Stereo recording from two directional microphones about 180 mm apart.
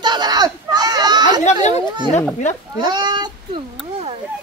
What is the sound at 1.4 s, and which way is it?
Chatter, 40° left (ahead or behind).